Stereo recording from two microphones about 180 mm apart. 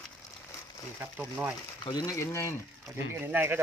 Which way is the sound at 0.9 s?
10° right (ahead or behind).